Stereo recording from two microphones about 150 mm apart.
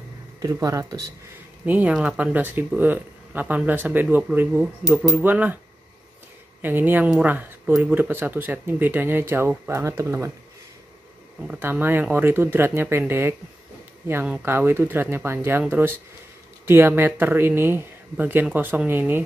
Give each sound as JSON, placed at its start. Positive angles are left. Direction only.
{"t": 0.4, "sound": "speech", "side_deg": -25}
{"t": 1.7, "sound": "speech", "side_deg": -10}
{"t": 6.6, "sound": "speech", "side_deg": -15}
{"t": 11.4, "sound": "speech", "side_deg": -10}